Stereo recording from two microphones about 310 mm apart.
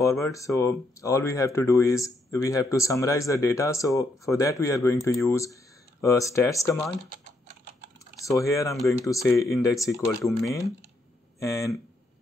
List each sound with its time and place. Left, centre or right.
0.0 s speech: centre
7.1 s typing: right
8.2 s speech: centre